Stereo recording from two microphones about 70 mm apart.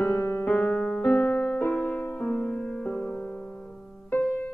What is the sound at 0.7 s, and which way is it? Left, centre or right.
Music, centre.